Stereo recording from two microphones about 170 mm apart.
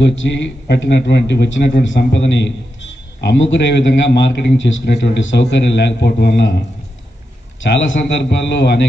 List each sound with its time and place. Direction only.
0.0 s a man's voice: 90° left
7.6 s a man's voice: 90° left